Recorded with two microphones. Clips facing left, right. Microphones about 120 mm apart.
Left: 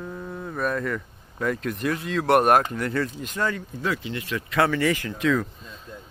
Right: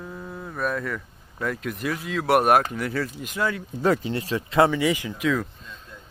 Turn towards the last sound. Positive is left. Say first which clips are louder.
# left 1 dB
turn(degrees=-5)  # may be behind; listen again after turning